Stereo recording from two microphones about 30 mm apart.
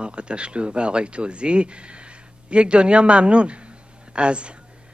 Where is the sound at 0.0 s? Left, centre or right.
Right.